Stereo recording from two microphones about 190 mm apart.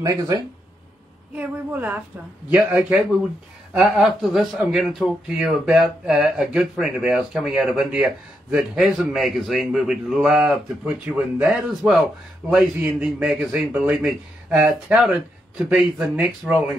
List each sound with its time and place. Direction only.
0.0 s speech: 20° right (ahead or behind)
1.3 s a woman's voice: 10° right (ahead or behind)